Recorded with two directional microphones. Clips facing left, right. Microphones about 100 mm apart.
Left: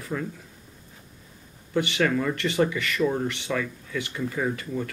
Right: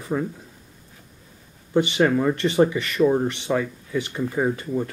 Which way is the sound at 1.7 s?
25° right (ahead or behind).